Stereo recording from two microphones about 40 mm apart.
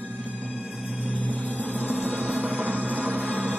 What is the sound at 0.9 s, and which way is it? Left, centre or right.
Music, right.